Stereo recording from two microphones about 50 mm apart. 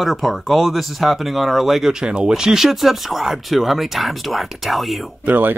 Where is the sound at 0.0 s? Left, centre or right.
Centre.